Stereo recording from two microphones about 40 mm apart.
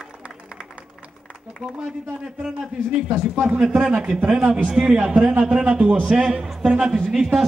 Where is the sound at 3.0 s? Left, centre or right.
Right.